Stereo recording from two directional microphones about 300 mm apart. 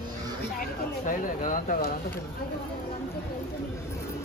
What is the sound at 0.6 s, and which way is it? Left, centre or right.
Speech, left.